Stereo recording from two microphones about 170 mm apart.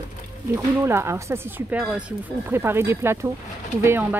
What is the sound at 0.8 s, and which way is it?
Speech, 15° right (ahead or behind).